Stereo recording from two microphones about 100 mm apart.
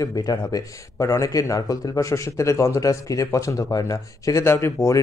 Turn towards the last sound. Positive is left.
turn(degrees=30)  # may be behind; listen again after turning